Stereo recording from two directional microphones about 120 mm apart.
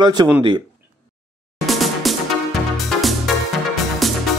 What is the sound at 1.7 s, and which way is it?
Music, centre (ahead or behind).